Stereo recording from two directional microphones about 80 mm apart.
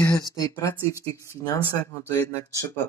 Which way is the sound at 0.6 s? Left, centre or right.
Left.